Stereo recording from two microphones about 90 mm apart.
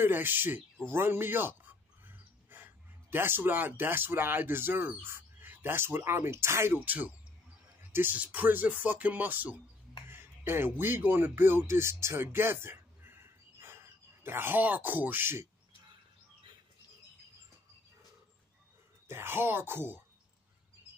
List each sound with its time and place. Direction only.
0.0 s a man's voice: 20° right (ahead or behind)
19.0 s speech: 25° right (ahead or behind)